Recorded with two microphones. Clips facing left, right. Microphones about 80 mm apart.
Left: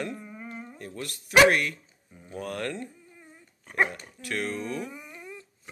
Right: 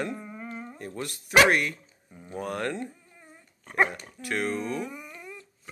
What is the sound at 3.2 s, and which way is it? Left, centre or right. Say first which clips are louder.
Dog: left 1 dB; centre.